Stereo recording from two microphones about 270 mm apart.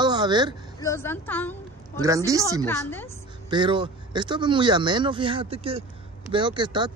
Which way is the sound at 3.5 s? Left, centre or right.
Centre.